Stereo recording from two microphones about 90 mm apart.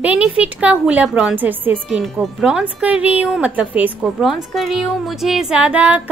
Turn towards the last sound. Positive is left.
turn(degrees=-15)  # may be behind; listen again after turning